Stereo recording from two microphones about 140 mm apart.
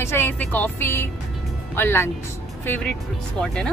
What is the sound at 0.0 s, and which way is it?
Speech, 15° left (ahead or behind).